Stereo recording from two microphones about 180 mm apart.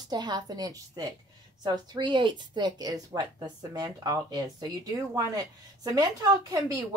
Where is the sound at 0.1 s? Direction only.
25° right (ahead or behind).